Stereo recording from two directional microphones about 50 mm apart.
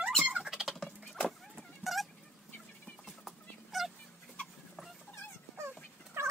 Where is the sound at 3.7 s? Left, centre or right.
Centre.